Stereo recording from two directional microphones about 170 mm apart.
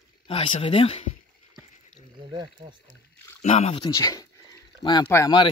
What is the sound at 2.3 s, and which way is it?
Speech, 25° right (ahead or behind).